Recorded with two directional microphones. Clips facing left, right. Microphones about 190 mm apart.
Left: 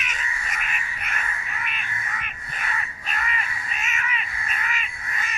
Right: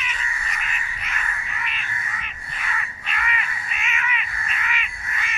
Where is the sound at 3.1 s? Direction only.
40° left (ahead or behind).